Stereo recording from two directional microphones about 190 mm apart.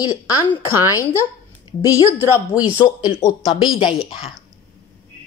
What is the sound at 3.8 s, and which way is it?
Speech, centre (ahead or behind).